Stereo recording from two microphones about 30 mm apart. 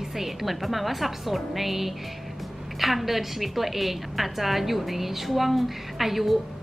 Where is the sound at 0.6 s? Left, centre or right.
Centre.